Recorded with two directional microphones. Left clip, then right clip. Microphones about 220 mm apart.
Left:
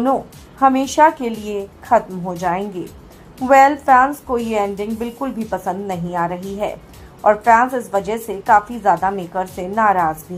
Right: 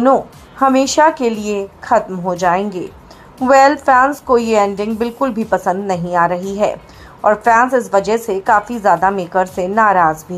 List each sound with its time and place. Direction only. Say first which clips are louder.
0.0 s a woman's voice: right 6 dB; 25° right (ahead or behind)